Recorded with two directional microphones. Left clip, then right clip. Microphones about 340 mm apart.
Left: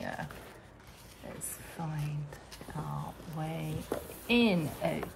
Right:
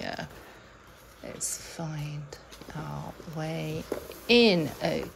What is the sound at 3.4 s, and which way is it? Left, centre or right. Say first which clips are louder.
Speech: right 6 dB; centre.